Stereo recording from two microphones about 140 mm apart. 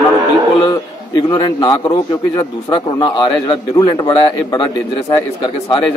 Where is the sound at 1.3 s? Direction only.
30° left (ahead or behind).